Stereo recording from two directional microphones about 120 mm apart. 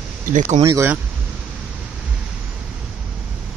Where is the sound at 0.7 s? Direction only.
25° right (ahead or behind).